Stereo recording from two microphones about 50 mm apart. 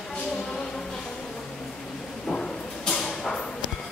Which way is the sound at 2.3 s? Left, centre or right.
Centre.